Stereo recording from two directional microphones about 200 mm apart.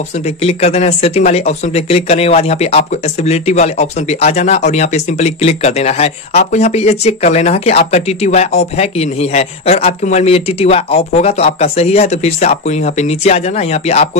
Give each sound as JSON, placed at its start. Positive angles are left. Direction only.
{"t": 0.4, "sound": "speech", "side_deg": 30}